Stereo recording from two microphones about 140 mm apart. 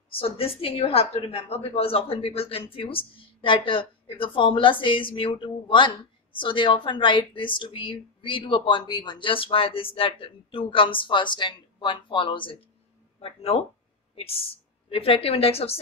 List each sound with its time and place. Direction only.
0.1 s a woman's voice: 40° left (ahead or behind)